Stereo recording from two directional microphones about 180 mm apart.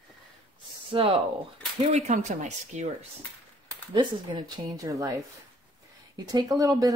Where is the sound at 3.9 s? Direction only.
25° right (ahead or behind).